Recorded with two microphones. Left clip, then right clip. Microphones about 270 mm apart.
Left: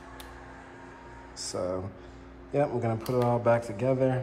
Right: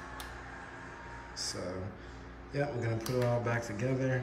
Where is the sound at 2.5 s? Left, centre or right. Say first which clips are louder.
Left 7 dB; centre.